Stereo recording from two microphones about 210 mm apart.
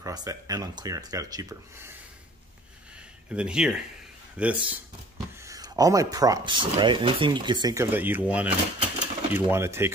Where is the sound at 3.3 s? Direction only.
5° right (ahead or behind).